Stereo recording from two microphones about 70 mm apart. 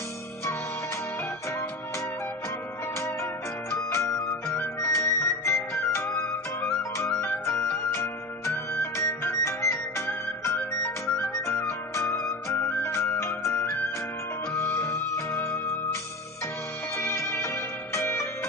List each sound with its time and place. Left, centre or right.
3.7 s music: left
14.5 s music: left
16.9 s music: left